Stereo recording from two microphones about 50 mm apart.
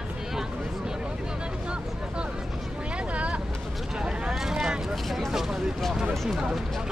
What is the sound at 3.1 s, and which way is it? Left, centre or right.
Vehicle, right.